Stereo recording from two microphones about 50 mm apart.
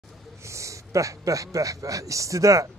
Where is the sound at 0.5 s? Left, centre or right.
Right.